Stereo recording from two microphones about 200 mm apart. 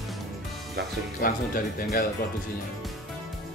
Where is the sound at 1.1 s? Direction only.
45° left (ahead or behind).